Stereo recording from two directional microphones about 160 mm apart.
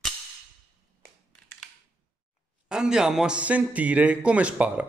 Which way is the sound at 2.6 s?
5° right (ahead or behind).